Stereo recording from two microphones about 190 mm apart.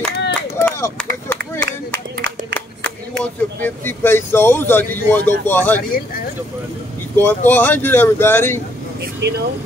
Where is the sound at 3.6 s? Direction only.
10° left (ahead or behind).